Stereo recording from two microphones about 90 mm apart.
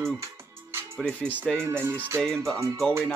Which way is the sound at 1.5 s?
25° right (ahead or behind).